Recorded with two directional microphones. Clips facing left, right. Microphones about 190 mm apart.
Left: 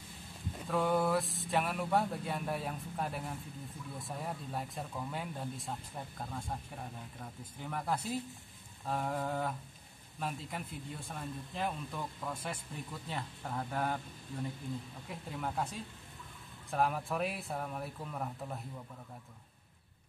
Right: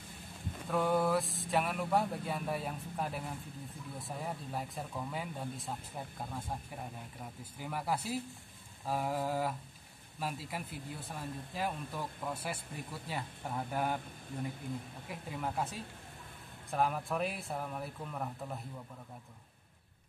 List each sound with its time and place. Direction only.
0.7 s a man's voice: centre (ahead or behind)
15.0 s speech: 5° right (ahead or behind)